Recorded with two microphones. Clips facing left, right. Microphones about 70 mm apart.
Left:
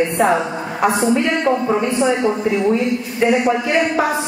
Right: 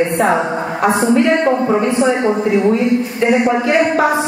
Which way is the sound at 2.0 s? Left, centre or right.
Right.